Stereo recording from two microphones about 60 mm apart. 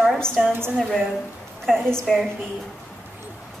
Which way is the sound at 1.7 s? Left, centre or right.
Centre.